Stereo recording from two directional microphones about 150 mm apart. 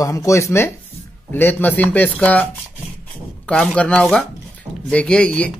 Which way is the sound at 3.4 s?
10° left (ahead or behind).